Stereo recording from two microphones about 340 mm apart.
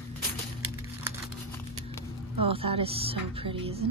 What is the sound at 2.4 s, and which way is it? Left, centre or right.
Speech, centre.